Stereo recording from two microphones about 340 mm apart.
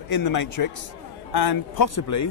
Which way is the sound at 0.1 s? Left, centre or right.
Left.